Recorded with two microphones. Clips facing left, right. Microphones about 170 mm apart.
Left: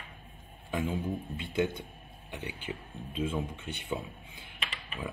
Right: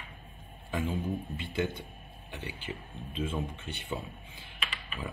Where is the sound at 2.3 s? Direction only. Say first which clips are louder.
Left 1 dB; 15° left (ahead or behind).